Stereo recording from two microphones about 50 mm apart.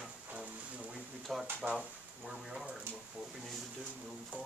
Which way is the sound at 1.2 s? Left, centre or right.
Centre.